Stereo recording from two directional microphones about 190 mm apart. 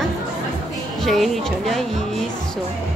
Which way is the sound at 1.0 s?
Centre (ahead or behind).